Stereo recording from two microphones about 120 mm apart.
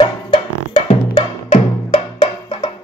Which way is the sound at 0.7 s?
55° left (ahead or behind).